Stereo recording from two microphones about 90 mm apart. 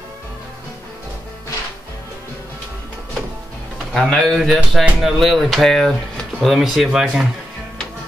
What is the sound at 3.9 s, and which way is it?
Speech, 5° left (ahead or behind).